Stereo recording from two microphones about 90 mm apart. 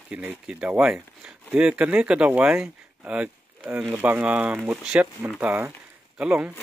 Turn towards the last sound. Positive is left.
turn(degrees=-15)  # may be behind; listen again after turning